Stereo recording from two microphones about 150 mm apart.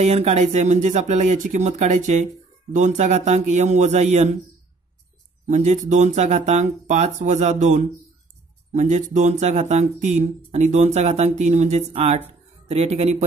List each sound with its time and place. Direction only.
0.0 s speech: 45° right (ahead or behind)
5.5 s speech: 55° right (ahead or behind)